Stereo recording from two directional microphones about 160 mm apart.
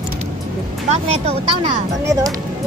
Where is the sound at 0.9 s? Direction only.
45° right (ahead or behind).